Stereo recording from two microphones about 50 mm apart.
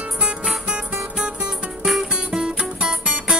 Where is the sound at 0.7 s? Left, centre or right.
Centre.